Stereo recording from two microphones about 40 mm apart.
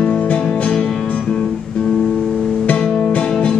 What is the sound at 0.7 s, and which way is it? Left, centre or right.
Music, centre.